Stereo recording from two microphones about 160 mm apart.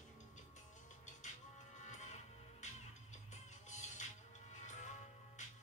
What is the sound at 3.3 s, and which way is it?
Music, 45° left (ahead or behind).